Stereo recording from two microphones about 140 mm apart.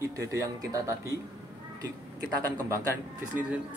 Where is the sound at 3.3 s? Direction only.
10° right (ahead or behind).